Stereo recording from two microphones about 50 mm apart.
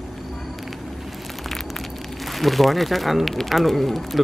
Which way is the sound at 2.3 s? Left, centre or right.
Centre.